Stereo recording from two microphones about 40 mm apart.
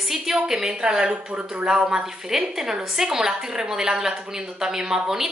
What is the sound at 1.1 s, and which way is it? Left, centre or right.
Speech, right.